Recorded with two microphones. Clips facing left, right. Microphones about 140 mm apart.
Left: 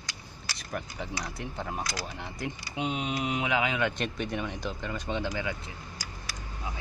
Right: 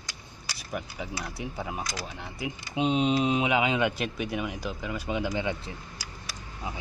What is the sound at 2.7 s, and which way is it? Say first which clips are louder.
Speech: right 8 dB; 20° right (ahead or behind).